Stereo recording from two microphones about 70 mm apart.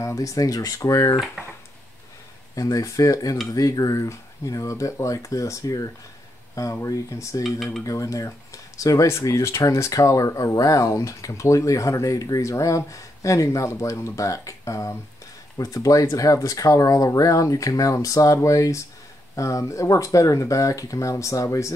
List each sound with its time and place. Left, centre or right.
0.0 s speech: left
2.5 s speech: left
7.4 s speech: centre
7.8 s speech: left
9.0 s speech: left